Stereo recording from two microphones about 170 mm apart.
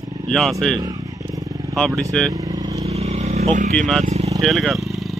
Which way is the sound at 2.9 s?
40° right (ahead or behind).